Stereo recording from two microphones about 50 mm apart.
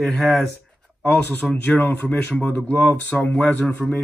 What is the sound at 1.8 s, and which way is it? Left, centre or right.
A man's voice, left.